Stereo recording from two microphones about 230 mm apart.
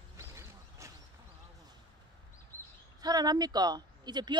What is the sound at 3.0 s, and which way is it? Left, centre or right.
A woman's voice, centre.